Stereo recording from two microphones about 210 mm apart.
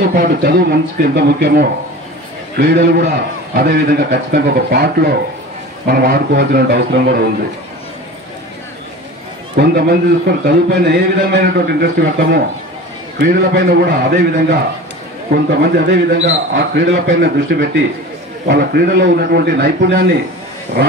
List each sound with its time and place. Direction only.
0.0 s a man's voice: 45° right (ahead or behind)
9.6 s a man's voice: 50° right (ahead or behind)